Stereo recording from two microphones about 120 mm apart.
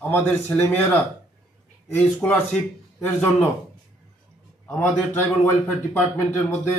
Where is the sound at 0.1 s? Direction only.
20° left (ahead or behind).